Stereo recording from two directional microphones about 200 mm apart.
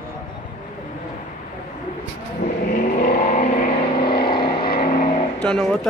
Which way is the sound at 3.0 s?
40° left (ahead or behind).